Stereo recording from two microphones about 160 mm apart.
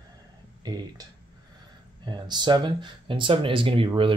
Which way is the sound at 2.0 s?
30° right (ahead or behind).